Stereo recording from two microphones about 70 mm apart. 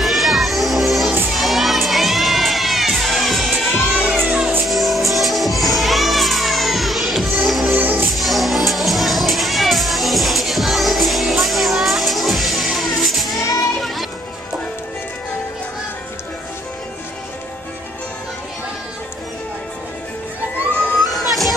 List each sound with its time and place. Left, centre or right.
0.0 s music: centre
1.3 s children shouting: centre
4.3 s music: centre
4.6 s music: centre
7.7 s music: right
8.1 s music: centre
21.0 s music: centre